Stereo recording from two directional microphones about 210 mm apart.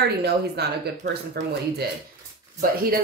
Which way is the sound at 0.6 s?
50° right (ahead or behind).